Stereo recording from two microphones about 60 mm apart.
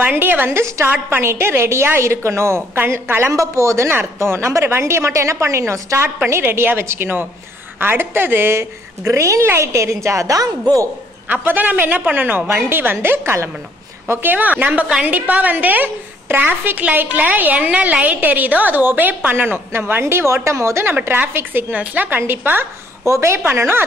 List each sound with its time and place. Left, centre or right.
0.1 s speech: right
0.5 s a woman's voice: right
3.9 s a woman's voice: right
6.2 s a woman's voice: right
11.4 s a woman's voice: right
20.0 s a woman's voice: right
21.0 s speech: right
21.7 s a woman's voice: right
23.0 s a woman's voice: right